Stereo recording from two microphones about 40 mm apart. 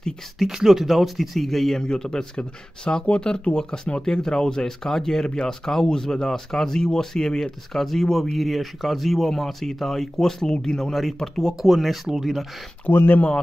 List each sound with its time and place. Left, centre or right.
0.4 s speech: centre
1.8 s speech: centre
7.7 s speech: centre
10.5 s speech: left
10.8 s speech: centre
11.1 s speech: centre
11.6 s speech: centre
12.9 s speech: left